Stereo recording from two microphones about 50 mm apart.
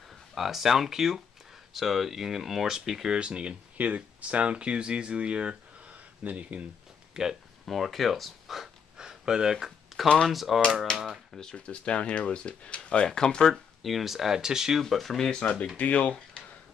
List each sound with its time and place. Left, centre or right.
0.3 s speech: centre
3.2 s speech: right
7.2 s speech: centre
7.6 s speech: centre
8.9 s a sound: centre
10.2 s speech: centre
11.1 s speech: centre
13.8 s speech: centre
14.8 s speech: centre
15.8 s speech: left